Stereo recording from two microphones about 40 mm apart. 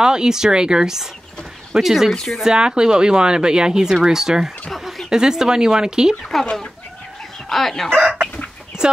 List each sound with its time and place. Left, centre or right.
0.0 s speech: centre
2.4 s speech: right
4.6 s a sound: centre
5.1 s speech: centre
6.4 s speech: centre
7.4 s speech: centre
7.9 s chicken: right
8.8 s speech: centre